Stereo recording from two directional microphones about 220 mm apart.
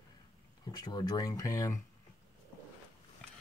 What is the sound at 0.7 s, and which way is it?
Speech, 20° left (ahead or behind).